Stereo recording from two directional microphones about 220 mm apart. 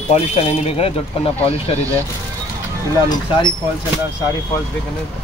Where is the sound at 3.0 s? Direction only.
20° left (ahead or behind).